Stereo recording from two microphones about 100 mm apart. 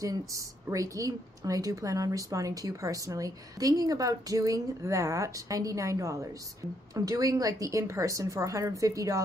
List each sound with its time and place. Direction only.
0.0 s a woman's voice: 35° right (ahead or behind)